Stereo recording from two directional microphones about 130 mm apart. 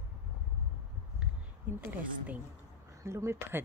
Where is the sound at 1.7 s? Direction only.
15° right (ahead or behind).